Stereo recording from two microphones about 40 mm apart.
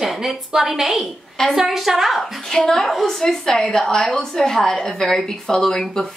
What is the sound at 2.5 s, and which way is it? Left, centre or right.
A woman's voice, centre.